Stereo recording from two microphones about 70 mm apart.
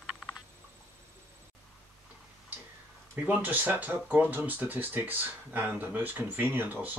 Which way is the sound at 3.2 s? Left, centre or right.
Right.